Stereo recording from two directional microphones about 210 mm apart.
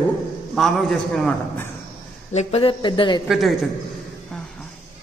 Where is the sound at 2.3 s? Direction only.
30° left (ahead or behind).